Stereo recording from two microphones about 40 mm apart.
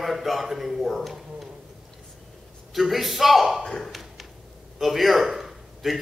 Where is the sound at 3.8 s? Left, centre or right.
Centre.